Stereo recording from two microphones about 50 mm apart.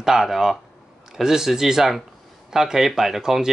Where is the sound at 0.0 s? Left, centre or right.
Centre.